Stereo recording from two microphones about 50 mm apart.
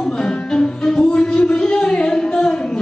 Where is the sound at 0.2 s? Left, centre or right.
Centre.